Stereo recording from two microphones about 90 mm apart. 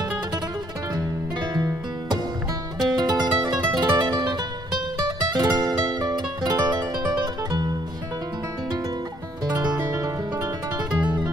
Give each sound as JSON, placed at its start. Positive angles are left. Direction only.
{"t": 0.9, "sound": "music", "side_deg": -50}